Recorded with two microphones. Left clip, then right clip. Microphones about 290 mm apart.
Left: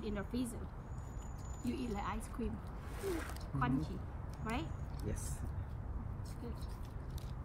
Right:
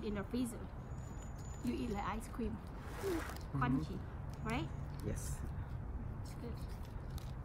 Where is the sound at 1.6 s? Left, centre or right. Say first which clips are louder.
Even; centre.